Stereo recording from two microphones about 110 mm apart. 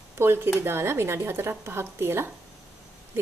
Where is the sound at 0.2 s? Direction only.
20° right (ahead or behind).